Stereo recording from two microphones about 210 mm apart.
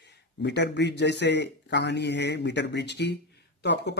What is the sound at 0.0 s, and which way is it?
Speech, 55° left (ahead or behind).